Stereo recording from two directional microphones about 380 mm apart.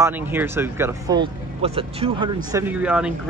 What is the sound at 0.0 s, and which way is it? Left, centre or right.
Speech, centre.